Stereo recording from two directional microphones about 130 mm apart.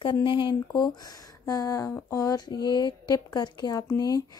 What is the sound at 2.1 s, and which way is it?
Speech, 30° left (ahead or behind).